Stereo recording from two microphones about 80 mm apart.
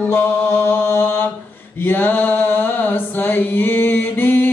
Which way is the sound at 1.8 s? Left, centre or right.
Left.